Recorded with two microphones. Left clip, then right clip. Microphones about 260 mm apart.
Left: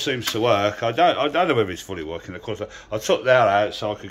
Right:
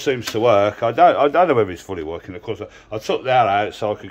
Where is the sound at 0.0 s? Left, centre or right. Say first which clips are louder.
Right 4 dB; centre.